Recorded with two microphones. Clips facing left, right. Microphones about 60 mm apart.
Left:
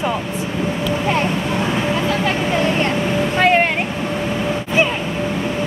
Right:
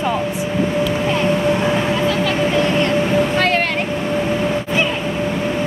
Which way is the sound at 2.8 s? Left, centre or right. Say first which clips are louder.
Right 2 dB; centre.